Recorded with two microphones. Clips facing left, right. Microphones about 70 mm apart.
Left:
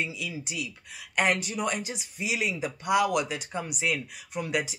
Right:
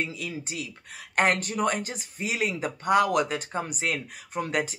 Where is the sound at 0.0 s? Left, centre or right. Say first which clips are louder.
Right 1 dB; right.